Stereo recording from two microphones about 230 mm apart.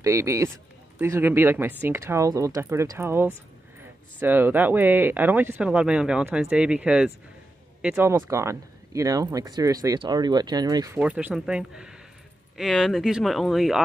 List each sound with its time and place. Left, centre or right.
0.0 s speech: centre
11.1 s speech: centre